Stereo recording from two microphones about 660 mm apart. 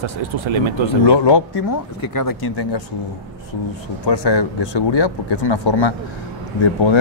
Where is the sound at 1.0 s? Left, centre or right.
Left.